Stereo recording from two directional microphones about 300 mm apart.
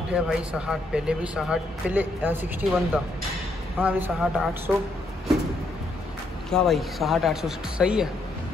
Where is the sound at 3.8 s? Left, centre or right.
Centre.